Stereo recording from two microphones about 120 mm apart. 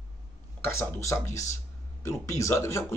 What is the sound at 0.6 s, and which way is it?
A man's voice, 20° left (ahead or behind).